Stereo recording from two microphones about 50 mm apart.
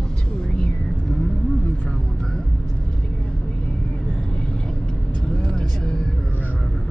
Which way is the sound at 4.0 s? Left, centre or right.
Centre.